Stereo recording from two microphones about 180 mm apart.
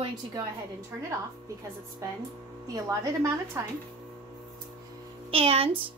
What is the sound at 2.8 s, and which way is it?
Speech, 15° right (ahead or behind).